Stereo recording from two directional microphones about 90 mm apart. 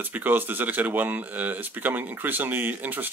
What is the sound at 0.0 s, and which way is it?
Speech, 20° right (ahead or behind).